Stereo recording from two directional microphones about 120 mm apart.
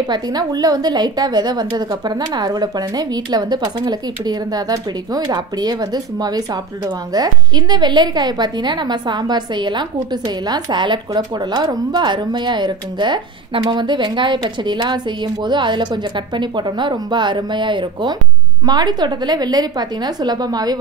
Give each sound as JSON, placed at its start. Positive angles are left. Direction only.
{"t": 0.0, "sound": "a woman's voice", "side_deg": -35}